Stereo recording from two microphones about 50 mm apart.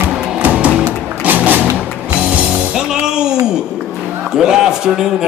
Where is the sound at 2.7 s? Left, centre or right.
Centre.